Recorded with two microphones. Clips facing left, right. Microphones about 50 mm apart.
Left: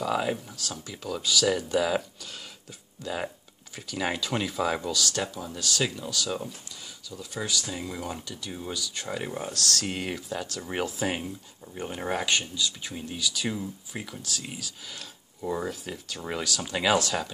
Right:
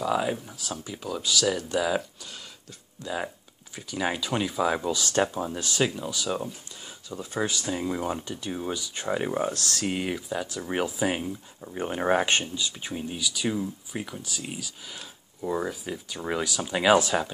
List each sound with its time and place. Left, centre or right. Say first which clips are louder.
0.0 s speech: right 1 dB; centre
4.8 s speech: right 4 dB; right
7.1 s speech: right 3 dB; right
9.8 s speech: right 3 dB; centre
11.6 s speech: right 6 dB; right